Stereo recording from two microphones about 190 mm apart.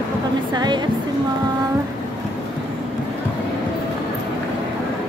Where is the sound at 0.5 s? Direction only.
20° right (ahead or behind).